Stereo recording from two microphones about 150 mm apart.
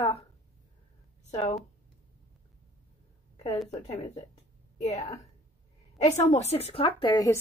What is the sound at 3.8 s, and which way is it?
Speech, 50° left (ahead or behind).